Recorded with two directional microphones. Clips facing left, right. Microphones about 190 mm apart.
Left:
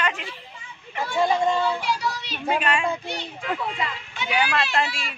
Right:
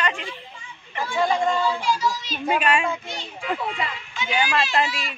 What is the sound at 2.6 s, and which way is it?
Speech, 15° right (ahead or behind).